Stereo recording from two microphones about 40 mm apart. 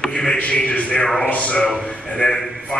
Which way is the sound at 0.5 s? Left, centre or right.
Left.